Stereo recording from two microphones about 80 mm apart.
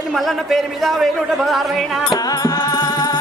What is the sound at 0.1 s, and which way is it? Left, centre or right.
A man's voice, centre.